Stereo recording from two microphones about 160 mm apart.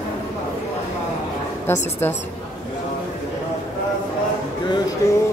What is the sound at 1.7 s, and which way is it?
Speech, 15° left (ahead or behind).